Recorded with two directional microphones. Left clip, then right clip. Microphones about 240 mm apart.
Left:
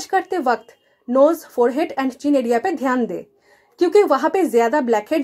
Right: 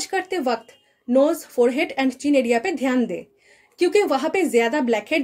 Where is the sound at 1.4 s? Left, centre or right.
Centre.